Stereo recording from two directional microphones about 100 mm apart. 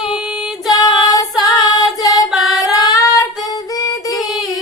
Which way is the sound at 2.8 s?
35° left (ahead or behind).